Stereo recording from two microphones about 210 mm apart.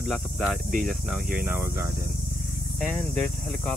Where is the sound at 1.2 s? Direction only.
45° right (ahead or behind).